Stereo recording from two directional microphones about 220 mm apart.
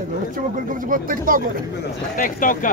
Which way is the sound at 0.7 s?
40° right (ahead or behind).